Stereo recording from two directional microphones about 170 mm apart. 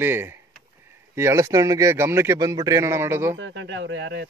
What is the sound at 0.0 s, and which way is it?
Speech, 15° right (ahead or behind).